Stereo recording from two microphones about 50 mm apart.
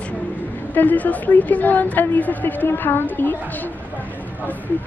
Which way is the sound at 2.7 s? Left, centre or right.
Left.